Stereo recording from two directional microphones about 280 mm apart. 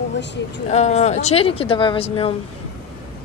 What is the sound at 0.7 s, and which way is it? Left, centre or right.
Speech, left.